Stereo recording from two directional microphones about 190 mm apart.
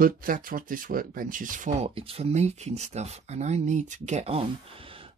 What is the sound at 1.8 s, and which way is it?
Speech, 30° right (ahead or behind).